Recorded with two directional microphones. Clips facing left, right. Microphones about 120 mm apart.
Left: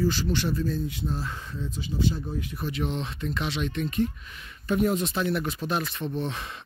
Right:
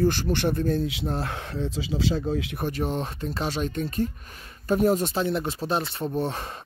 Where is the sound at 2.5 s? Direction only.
45° right (ahead or behind).